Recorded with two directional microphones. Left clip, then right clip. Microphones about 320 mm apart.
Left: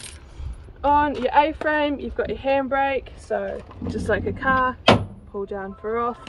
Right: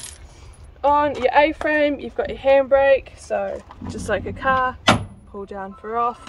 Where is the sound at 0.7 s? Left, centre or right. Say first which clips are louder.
Right 1 dB; right.